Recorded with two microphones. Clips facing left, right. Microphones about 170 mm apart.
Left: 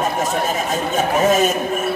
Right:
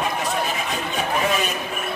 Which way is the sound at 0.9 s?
45° left (ahead or behind).